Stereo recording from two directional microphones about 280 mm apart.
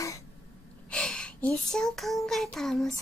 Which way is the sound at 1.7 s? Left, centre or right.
Centre.